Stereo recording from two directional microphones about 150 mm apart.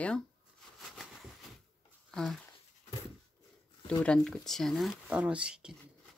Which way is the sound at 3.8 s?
5° left (ahead or behind).